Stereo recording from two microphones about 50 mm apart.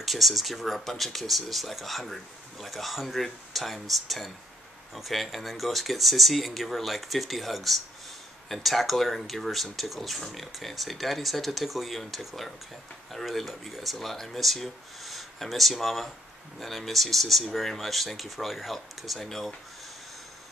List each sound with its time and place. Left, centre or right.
0.0 s speech: centre